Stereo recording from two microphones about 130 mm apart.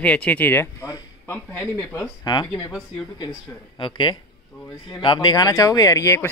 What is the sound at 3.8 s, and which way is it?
Speech, 35° left (ahead or behind).